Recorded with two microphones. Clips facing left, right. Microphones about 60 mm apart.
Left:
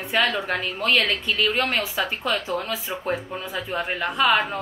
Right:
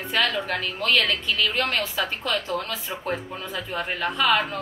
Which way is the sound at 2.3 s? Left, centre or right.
Centre.